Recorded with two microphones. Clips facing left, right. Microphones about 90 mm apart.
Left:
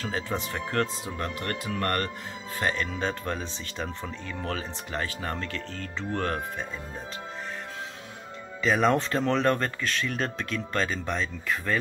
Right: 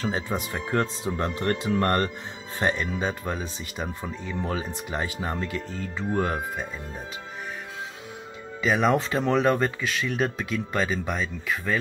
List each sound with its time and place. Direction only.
0.1 s speech: 15° right (ahead or behind)
8.6 s speech: 5° right (ahead or behind)